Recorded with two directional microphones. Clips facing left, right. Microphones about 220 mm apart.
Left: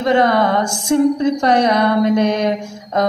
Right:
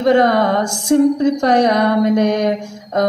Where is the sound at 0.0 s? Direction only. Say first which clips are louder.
Right 2 dB; 45° right (ahead or behind).